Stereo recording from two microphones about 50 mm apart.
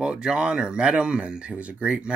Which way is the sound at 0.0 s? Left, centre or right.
Centre.